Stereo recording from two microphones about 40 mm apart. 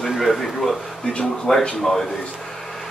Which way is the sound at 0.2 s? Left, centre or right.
Centre.